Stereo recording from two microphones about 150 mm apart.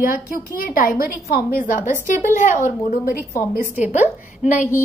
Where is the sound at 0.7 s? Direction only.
75° left (ahead or behind).